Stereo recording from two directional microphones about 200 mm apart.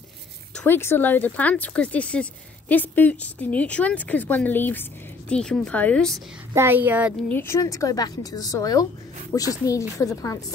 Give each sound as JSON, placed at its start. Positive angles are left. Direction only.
{"t": 0.7, "sound": "speech", "side_deg": 10}
{"t": 6.5, "sound": "speech", "side_deg": -10}
{"t": 7.2, "sound": "speech", "side_deg": 10}